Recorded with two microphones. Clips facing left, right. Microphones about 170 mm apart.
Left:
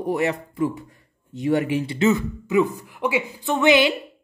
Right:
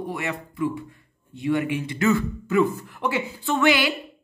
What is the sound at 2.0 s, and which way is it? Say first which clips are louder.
Speech: even; 15° left (ahead or behind).